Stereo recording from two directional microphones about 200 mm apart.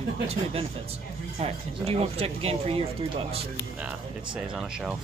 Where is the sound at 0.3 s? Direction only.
30° right (ahead or behind).